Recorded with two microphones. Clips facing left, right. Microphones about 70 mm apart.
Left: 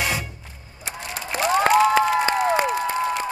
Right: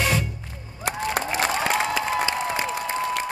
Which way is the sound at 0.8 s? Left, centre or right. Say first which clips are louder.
Right 7 dB; right.